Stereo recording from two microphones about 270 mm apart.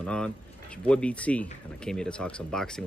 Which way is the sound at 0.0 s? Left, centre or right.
Centre.